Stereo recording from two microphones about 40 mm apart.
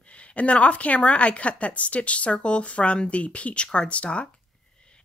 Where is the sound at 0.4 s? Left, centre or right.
Left.